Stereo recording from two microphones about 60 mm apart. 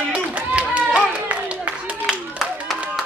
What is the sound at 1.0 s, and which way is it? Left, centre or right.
Clapping, right.